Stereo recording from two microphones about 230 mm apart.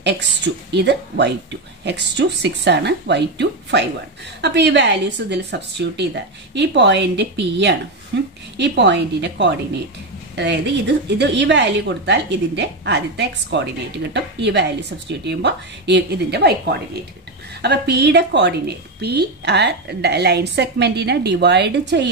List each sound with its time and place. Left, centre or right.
0.7 s a woman's voice: right